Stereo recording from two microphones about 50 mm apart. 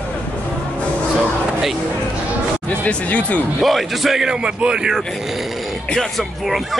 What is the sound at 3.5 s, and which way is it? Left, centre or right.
A man's voice, centre.